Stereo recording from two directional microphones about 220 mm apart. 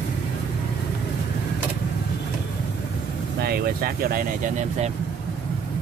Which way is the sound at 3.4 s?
45° right (ahead or behind).